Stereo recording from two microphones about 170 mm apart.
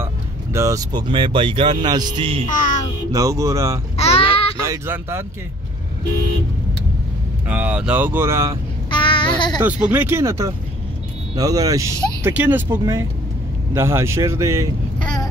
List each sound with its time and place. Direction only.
0.0 s speech: 15° right (ahead or behind)
2.5 s music: 50° left (ahead or behind)
3.1 s speech: 20° right (ahead or behind)
3.9 s child singing: 35° left (ahead or behind)
4.6 s speech: 15° right (ahead or behind)
7.4 s speech: 10° right (ahead or behind)
8.9 s a sound: 30° left (ahead or behind)
9.6 s speech: 10° right (ahead or behind)
15.0 s vehicle: 25° left (ahead or behind)